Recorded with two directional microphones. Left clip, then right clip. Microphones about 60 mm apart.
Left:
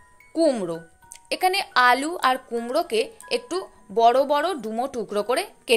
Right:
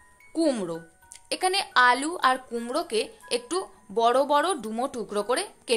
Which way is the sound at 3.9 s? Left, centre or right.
Centre.